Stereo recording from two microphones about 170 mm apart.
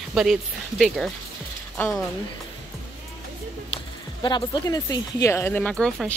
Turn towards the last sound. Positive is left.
turn(degrees=5)  # may be behind; listen again after turning